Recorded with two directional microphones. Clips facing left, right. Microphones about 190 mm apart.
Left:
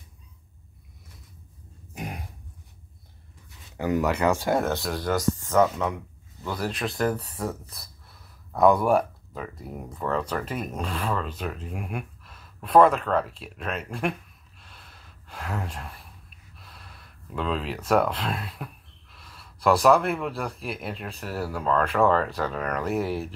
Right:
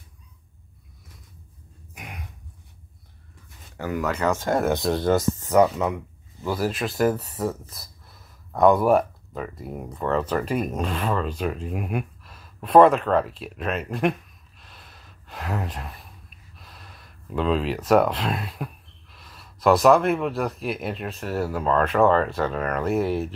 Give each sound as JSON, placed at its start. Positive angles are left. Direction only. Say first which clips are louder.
{"t": 2.0, "sound": "a sound", "louder": "left 6 dB", "side_deg": 35}
{"t": 3.7, "sound": "speech", "louder": "left 2 dB", "side_deg": 15}
{"t": 4.6, "sound": "speech", "louder": "right 6 dB", "side_deg": -20}
{"t": 6.4, "sound": "speech", "louder": "right 4 dB", "side_deg": -5}
{"t": 10.3, "sound": "speech", "louder": "right 6 dB", "side_deg": -10}
{"t": 12.5, "sound": "speech", "louder": "right 3 dB", "side_deg": -25}
{"t": 13.1, "sound": "speech", "louder": "right 4 dB", "side_deg": -5}
{"t": 15.3, "sound": "speech", "louder": "right 3 dB", "side_deg": -10}
{"t": 17.4, "sound": "speech", "louder": "right 5 dB", "side_deg": -5}
{"t": 19.8, "sound": "speech", "louder": "right 2 dB", "side_deg": 0}
{"t": 22.9, "sound": "speech", "louder": "right 4 dB", "side_deg": -20}